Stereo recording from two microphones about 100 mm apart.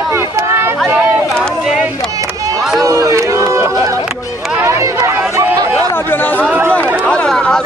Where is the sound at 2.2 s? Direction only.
35° right (ahead or behind).